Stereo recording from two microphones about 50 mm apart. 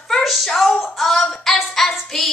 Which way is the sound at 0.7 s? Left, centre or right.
Centre.